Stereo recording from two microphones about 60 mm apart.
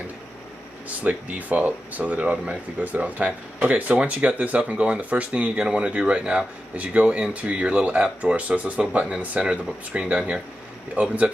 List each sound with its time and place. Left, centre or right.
0.8 s speech: right